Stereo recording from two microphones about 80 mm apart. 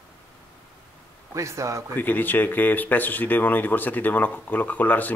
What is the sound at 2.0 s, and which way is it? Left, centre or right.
Speech, left.